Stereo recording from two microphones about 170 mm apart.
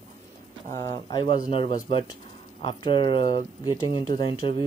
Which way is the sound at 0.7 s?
25° left (ahead or behind).